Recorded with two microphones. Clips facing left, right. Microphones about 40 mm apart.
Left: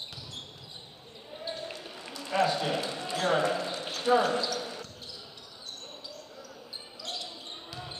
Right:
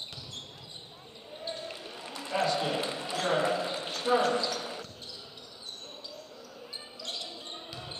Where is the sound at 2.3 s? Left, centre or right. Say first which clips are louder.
Left 2 dB; centre.